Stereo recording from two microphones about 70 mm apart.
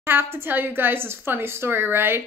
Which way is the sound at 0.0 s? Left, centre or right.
Right.